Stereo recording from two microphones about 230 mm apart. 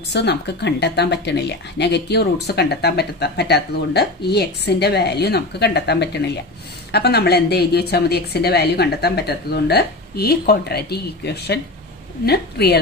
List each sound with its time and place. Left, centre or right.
0.1 s speech: left